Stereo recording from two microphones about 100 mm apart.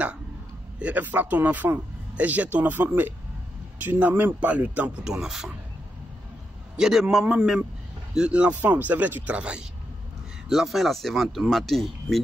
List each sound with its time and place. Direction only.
0.7 s speech: 15° right (ahead or behind)
6.8 s speech: 5° right (ahead or behind)